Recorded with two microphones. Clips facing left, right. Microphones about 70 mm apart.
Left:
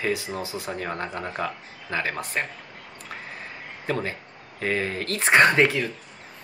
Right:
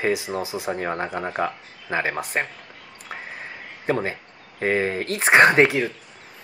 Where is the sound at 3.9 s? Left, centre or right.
Centre.